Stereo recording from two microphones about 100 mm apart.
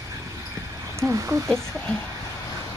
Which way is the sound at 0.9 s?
25° right (ahead or behind).